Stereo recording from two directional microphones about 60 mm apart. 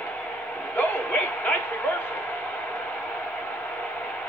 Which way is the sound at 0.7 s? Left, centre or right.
Left.